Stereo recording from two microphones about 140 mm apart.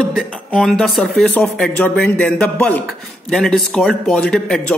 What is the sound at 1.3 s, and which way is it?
A man's voice, 10° left (ahead or behind).